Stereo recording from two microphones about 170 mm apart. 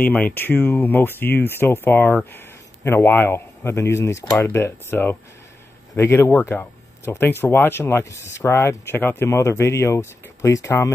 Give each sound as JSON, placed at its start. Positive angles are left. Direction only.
{"t": 0.0, "sound": "speech", "side_deg": 10}